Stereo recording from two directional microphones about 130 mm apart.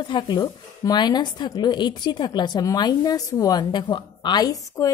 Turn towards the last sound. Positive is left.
turn(degrees=25)  # may be behind; listen again after turning